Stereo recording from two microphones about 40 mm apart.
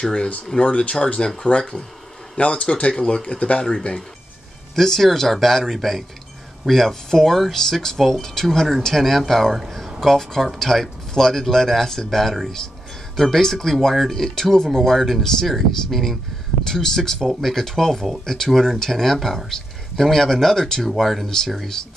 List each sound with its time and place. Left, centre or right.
0.0 s speech: centre
0.6 s speech: left
2.3 s speech: left
4.7 s speech: centre
21.8 s speech: centre